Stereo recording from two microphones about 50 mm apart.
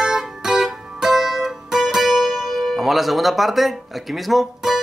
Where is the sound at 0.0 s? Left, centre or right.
Centre.